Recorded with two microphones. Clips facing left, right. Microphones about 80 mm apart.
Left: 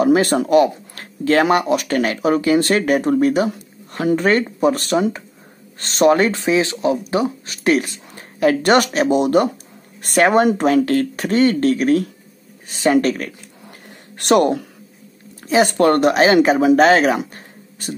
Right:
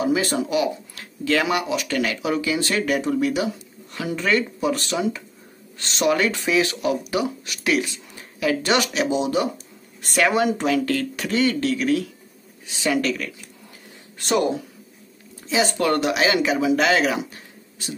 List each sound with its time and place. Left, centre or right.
0.0 s speech: left
14.1 s speech: left
15.4 s speech: left